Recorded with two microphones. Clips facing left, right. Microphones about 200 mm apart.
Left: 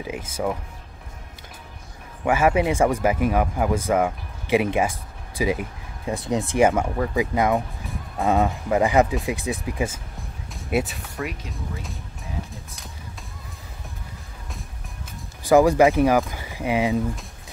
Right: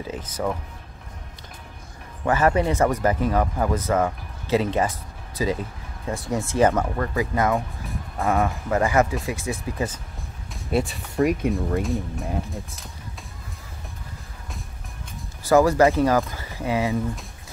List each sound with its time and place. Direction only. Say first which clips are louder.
0.0 s speech: left 1 dB; 10° left (ahead or behind)
2.2 s speech: left 1 dB; 10° left (ahead or behind)
10.5 s music: even; 5° left (ahead or behind)
11.2 s speech: right 10 dB; 30° right (ahead or behind)
11.8 s speech: right 12 dB; centre (ahead or behind)
15.4 s speech: left 1 dB; 15° left (ahead or behind)